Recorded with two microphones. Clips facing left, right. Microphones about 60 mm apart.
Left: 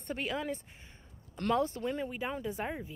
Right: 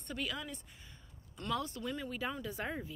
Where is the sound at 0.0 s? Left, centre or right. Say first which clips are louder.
Left 5 dB; left.